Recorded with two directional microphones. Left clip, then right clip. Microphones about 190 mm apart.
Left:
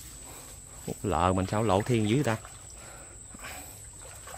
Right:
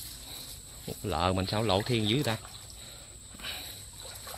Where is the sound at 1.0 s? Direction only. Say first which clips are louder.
Left 3 dB; 20° left (ahead or behind).